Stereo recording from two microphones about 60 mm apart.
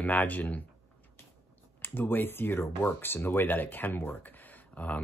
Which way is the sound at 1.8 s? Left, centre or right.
Left.